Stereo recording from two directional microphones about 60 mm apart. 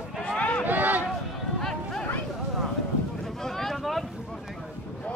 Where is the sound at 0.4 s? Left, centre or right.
Left.